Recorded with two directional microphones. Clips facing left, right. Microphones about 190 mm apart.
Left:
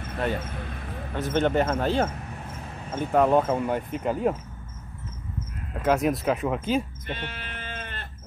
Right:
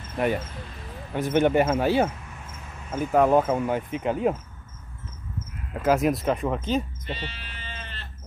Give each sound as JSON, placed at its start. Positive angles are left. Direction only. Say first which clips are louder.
{"t": 0.4, "sound": "speech", "louder": "left 3 dB", "side_deg": 60}
{"t": 1.1, "sound": "speech", "louder": "right 3 dB", "side_deg": -15}
{"t": 5.8, "sound": "speech", "louder": "right 1 dB", "side_deg": 0}
{"t": 7.1, "sound": "sheep", "louder": "left 1 dB", "side_deg": 55}